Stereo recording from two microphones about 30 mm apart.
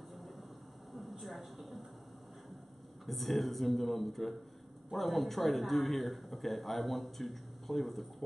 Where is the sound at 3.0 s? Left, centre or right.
Centre.